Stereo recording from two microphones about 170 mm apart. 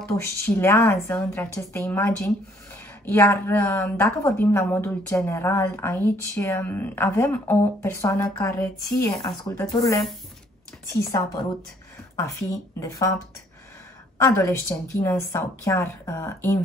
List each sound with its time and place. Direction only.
0.6 s a woman's voice: 15° left (ahead or behind)
12.2 s a woman's voice: 15° left (ahead or behind)
14.1 s a woman's voice: 15° left (ahead or behind)